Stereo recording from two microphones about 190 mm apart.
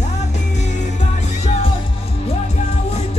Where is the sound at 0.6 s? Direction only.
40° left (ahead or behind).